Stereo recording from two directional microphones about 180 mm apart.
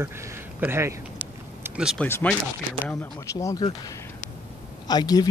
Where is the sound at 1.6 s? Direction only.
5° right (ahead or behind).